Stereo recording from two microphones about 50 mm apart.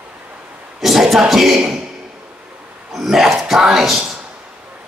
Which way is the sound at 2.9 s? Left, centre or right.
Centre.